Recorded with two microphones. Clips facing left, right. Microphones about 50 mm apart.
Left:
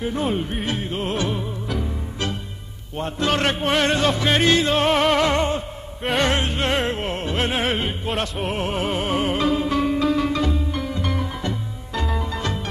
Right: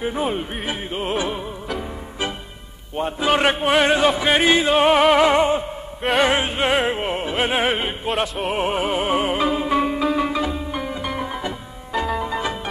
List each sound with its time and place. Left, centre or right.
0.0 s music: centre